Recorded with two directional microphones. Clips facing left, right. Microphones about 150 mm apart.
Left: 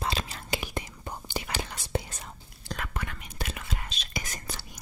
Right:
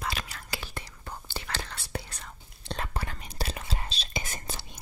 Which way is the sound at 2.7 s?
30° right (ahead or behind).